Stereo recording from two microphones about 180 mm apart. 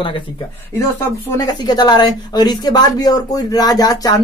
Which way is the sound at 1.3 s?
20° left (ahead or behind).